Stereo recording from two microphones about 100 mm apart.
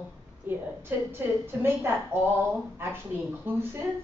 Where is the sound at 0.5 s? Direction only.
20° right (ahead or behind).